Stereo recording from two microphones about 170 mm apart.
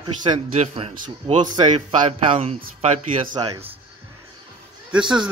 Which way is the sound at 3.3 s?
20° right (ahead or behind).